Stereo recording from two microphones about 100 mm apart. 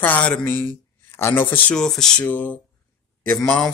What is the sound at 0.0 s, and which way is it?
Speech, 15° left (ahead or behind).